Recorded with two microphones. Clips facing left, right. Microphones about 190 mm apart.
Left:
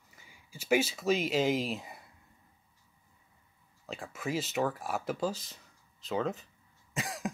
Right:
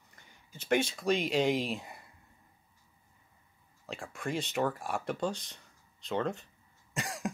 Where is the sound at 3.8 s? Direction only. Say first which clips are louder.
Even; centre (ahead or behind).